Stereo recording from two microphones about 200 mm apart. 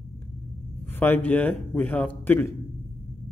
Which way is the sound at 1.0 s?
10° left (ahead or behind).